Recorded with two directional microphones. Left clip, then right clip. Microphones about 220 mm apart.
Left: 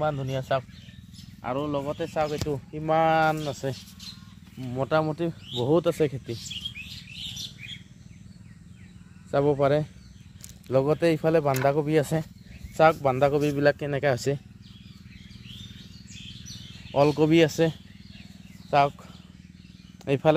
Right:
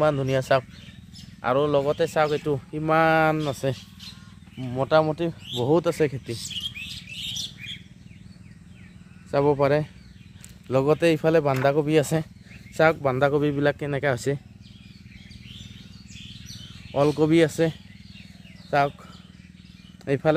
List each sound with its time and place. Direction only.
0.0 s speech: 40° right (ahead or behind)
2.7 s speech: 20° right (ahead or behind)
4.6 s speech: centre (ahead or behind)
9.3 s speech: centre (ahead or behind)
16.9 s speech: 5° left (ahead or behind)
20.1 s speech: 5° left (ahead or behind)